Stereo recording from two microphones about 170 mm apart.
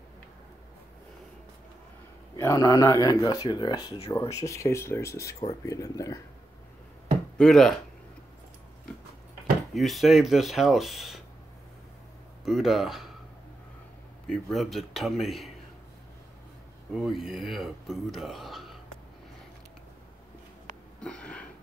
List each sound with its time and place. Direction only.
2.3 s speech: 20° left (ahead or behind)
7.3 s speech: 5° left (ahead or behind)
9.8 s speech: centre (ahead or behind)
12.4 s speech: centre (ahead or behind)
14.2 s speech: centre (ahead or behind)
16.9 s speech: centre (ahead or behind)
21.0 s wheeze: 5° left (ahead or behind)